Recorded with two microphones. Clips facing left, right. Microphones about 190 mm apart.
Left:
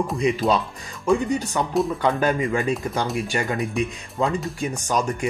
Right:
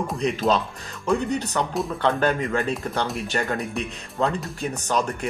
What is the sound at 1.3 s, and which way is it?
Speech, 10° left (ahead or behind).